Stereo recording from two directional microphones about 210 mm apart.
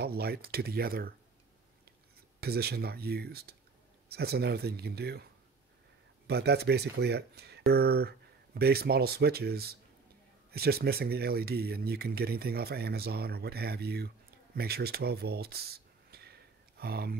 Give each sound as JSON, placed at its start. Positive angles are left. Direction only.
{"t": 0.0, "sound": "speech", "side_deg": -50}
{"t": 2.4, "sound": "speech", "side_deg": -50}
{"t": 6.2, "sound": "speech", "side_deg": -50}